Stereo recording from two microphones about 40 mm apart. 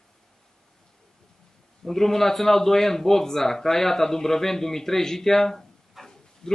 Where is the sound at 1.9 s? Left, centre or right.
Centre.